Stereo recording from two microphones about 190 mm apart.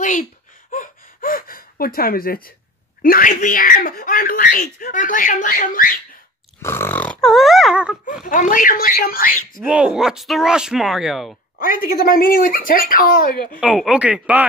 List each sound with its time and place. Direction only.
0.0 s gasp: 45° left (ahead or behind)
3.0 s speech: 45° left (ahead or behind)
6.6 s speech: 15° left (ahead or behind); by 8.0 s 5° right (ahead or behind)
8.3 s speech: 45° left (ahead or behind)
9.6 s speech: 5° right (ahead or behind)
11.6 s speech: 50° left (ahead or behind)
13.6 s speech: 5° right (ahead or behind)